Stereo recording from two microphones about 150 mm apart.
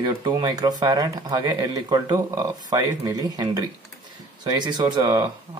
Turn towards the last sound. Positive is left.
turn(degrees=-25)  # may be behind; listen again after turning